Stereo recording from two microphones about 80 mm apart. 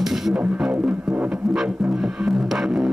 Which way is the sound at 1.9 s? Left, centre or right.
Centre.